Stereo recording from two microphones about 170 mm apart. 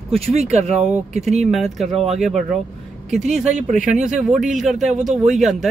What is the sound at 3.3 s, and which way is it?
Speech, 45° right (ahead or behind).